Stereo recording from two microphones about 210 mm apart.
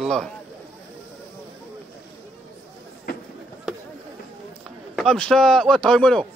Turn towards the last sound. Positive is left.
turn(degrees=5)  # may be behind; listen again after turning